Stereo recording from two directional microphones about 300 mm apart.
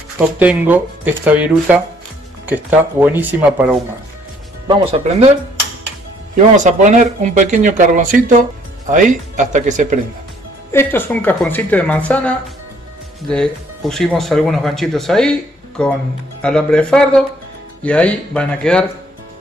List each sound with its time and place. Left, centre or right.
0.4 s speech: centre
4.6 s speech: centre
6.5 s speech: right
10.7 s speech: centre